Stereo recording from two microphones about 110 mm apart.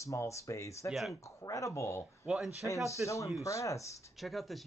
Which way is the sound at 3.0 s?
30° left (ahead or behind).